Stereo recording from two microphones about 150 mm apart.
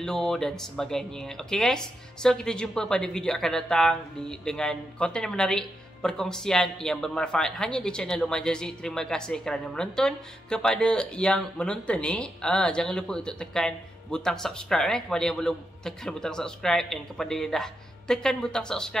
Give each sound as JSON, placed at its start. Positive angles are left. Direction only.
{"t": 0.0, "sound": "speech", "side_deg": 5}